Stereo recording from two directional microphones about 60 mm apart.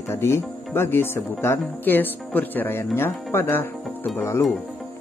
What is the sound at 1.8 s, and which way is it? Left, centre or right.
Speech, left.